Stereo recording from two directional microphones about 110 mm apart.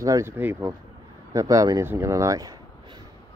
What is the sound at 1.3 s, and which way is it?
Speech, 30° right (ahead or behind).